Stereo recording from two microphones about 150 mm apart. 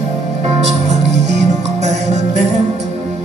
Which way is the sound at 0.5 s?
50° right (ahead or behind).